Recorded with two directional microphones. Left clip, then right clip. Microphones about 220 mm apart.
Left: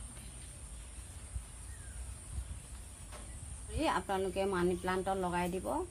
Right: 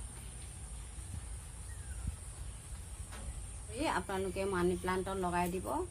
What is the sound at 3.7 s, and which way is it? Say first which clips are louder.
Speech: left 2 dB; 25° left (ahead or behind).